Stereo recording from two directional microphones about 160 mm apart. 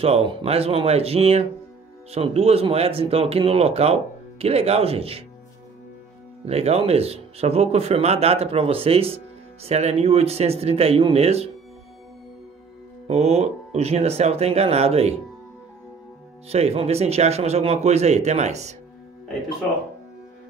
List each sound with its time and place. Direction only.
0.0 s speech: 35° right (ahead or behind)
6.4 s speech: 40° right (ahead or behind)
13.0 s speech: 45° right (ahead or behind)
16.4 s speech: 40° right (ahead or behind)